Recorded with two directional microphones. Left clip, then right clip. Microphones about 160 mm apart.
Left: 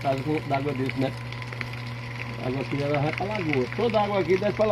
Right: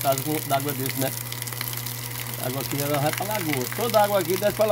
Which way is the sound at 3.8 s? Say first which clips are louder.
Right 5 dB; 20° right (ahead or behind).